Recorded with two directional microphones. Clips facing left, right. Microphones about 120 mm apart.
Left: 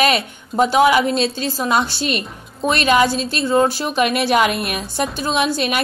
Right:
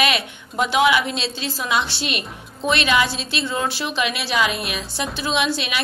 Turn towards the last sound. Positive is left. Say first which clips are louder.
# left 4 dB
turn(degrees=45)  # may be behind; listen again after turning